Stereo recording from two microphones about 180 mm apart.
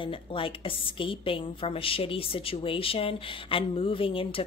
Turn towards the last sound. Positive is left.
turn(degrees=30)  # may be behind; listen again after turning